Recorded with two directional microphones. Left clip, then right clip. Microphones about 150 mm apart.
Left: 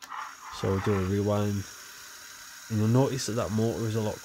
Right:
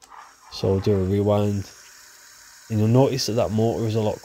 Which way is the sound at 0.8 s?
5° right (ahead or behind).